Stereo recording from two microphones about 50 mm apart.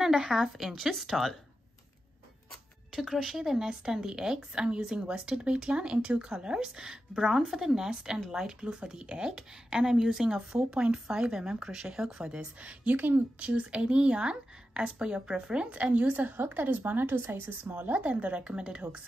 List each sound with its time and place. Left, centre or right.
0.0 s speech: centre
2.9 s a woman's voice: centre
12.5 s a woman's voice: right
13.4 s a woman's voice: right